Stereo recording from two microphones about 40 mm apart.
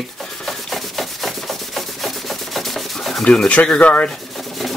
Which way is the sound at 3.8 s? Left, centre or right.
Left.